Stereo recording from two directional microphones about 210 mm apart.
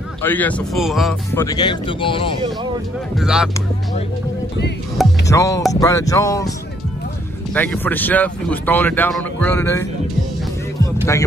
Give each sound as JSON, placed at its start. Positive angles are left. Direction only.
{"t": 0.2, "sound": "speech", "side_deg": 10}
{"t": 1.3, "sound": "speech", "side_deg": 15}
{"t": 3.2, "sound": "speech", "side_deg": -5}
{"t": 5.0, "sound": "speech", "side_deg": 0}
{"t": 5.3, "sound": "speech", "side_deg": 15}
{"t": 7.5, "sound": "speech", "side_deg": 10}